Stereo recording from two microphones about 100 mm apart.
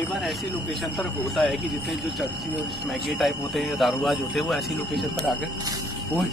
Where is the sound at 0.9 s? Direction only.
Centre (ahead or behind).